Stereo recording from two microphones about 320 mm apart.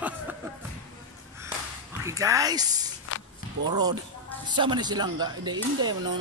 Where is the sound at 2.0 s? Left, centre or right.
Centre.